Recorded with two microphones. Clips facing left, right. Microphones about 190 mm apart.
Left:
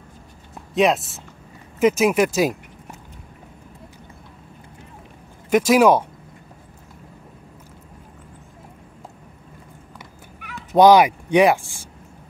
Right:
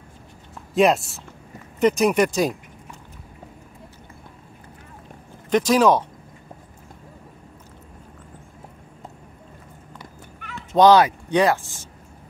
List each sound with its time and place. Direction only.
0.7 s speech: centre (ahead or behind)
5.5 s speech: 10° left (ahead or behind)
10.4 s speech: 10° left (ahead or behind)